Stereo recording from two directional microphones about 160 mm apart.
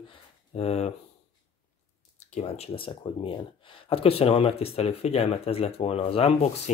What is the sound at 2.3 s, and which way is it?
Speech, 40° left (ahead or behind).